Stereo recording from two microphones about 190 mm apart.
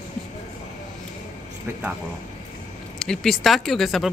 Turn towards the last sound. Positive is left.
turn(degrees=0)  # may be behind; listen again after turning